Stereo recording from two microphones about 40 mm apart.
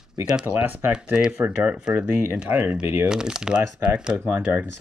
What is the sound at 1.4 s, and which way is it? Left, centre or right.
Speech, right.